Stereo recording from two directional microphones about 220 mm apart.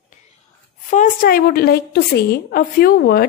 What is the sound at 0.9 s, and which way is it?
A woman's voice, 35° left (ahead or behind).